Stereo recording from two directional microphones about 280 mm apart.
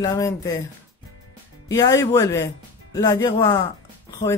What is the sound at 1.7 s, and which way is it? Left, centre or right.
Speech, centre.